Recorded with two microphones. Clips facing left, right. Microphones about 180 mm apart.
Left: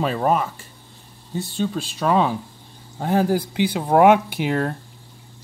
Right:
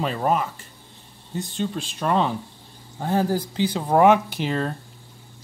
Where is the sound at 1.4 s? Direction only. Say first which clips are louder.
Left 3 dB; 10° left (ahead or behind).